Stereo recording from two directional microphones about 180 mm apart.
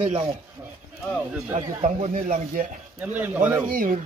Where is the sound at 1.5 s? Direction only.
40° right (ahead or behind).